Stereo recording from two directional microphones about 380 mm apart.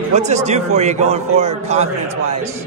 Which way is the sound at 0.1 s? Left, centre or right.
Centre.